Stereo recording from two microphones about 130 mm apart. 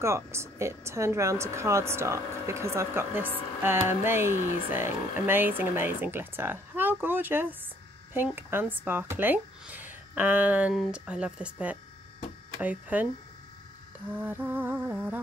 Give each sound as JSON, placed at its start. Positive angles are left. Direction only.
{"t": 0.0, "sound": "a woman's voice", "side_deg": -20}